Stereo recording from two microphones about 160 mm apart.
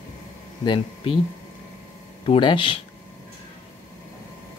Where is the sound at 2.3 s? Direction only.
30° left (ahead or behind).